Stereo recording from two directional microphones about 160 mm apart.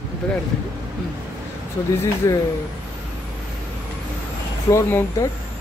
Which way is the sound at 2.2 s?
20° left (ahead or behind).